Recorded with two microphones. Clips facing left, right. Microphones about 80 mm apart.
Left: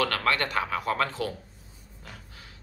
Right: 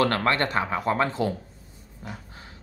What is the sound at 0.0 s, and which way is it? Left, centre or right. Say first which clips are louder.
Speech: right 4 dB; right.